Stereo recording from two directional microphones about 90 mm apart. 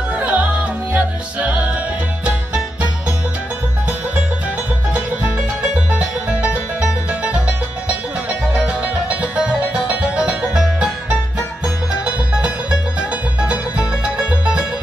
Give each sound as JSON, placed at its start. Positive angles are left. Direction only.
{"t": 0.1, "sound": "music", "side_deg": -15}
{"t": 5.9, "sound": "music", "side_deg": -15}
{"t": 8.5, "sound": "music", "side_deg": -15}
{"t": 12.0, "sound": "music", "side_deg": -15}